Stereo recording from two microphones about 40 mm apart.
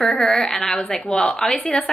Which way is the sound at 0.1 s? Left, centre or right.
Centre.